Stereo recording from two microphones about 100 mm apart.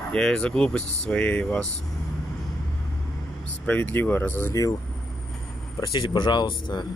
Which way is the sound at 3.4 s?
15° left (ahead or behind).